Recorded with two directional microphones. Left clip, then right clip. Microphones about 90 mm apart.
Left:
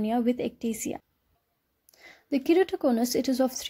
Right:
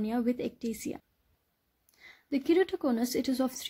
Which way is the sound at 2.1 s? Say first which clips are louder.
Left 4 dB; 30° left (ahead or behind).